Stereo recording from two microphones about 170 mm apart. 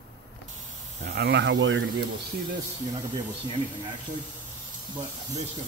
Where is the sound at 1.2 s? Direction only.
85° right.